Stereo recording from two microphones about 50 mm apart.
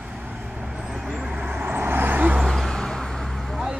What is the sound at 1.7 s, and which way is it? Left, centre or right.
Vehicle, right.